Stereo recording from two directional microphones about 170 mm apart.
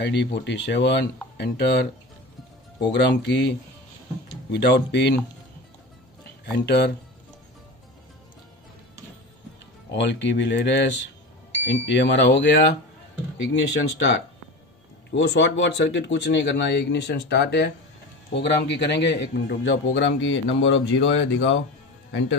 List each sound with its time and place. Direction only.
0.0 s a man's voice: 90° left
6.5 s speech: 75° left (ahead or behind)
9.9 s a man's voice: 90° left